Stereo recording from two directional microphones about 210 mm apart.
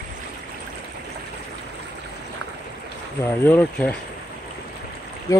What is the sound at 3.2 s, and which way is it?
Speech, 10° left (ahead or behind).